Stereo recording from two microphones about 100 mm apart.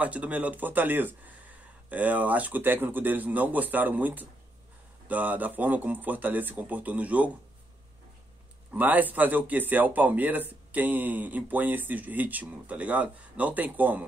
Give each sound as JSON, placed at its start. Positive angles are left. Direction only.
{"t": 0.0, "sound": "speech", "side_deg": -15}
{"t": 8.7, "sound": "speech", "side_deg": -15}